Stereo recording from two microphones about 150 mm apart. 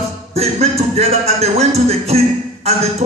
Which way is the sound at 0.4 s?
45° right (ahead or behind).